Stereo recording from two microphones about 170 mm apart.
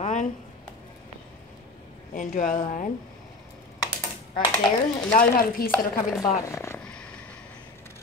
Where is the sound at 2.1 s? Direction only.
50° left (ahead or behind).